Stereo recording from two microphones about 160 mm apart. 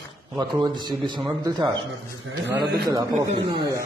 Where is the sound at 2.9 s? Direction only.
20° right (ahead or behind).